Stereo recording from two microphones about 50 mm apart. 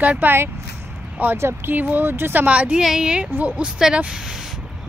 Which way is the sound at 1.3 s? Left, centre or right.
Right.